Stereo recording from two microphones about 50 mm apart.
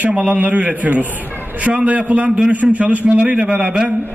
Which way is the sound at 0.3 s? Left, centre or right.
Right.